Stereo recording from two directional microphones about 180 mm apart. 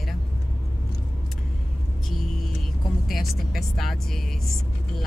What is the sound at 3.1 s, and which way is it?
Speech, centre (ahead or behind).